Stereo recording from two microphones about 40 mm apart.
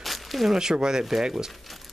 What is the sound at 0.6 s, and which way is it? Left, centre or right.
Speech, centre.